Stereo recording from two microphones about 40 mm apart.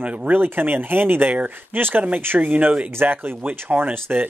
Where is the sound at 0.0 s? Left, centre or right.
Right.